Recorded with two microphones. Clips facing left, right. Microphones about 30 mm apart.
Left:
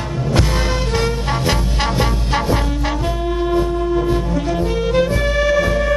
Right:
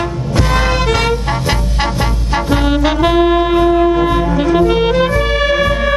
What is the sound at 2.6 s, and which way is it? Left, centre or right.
Saxophone, right.